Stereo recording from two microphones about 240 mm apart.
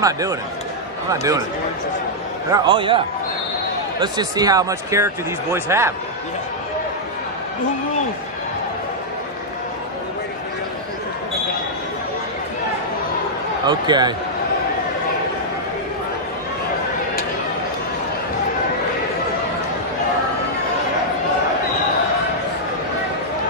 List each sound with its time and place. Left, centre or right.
0.0 s speech: centre
2.5 s a man's voice: centre
4.0 s speech: centre
13.7 s speech: centre